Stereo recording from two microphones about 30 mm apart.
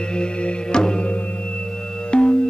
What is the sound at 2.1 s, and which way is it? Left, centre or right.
Music, left.